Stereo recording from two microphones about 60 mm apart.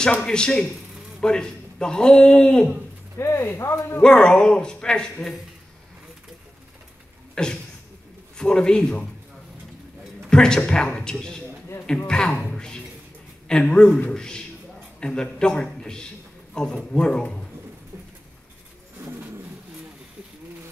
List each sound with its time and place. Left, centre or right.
0.2 s a man's voice: centre
3.2 s speech: left
4.0 s a man's voice: centre
7.4 s a sound: centre
8.4 s a man's voice: centre
10.3 s a man's voice: centre
19.0 s bird: right